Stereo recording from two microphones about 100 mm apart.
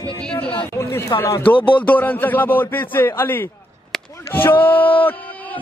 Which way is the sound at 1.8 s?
15° left (ahead or behind).